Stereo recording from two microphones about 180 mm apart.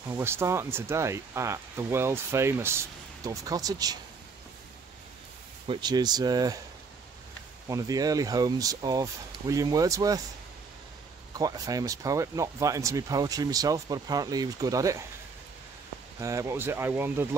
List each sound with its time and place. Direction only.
0.1 s speech: 15° right (ahead or behind)
5.7 s speech: 25° right (ahead or behind)
7.6 s speech: 20° right (ahead or behind)
11.3 s speech: 20° right (ahead or behind)
16.2 s speech: 15° right (ahead or behind)